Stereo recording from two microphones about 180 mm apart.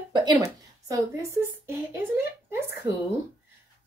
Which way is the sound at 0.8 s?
20° right (ahead or behind).